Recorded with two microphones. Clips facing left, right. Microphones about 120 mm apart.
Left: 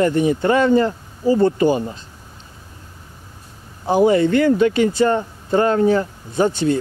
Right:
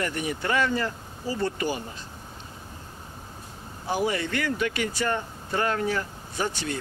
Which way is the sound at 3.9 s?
30° left (ahead or behind).